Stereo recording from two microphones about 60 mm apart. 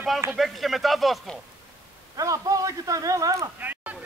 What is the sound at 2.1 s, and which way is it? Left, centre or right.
A man's voice, right.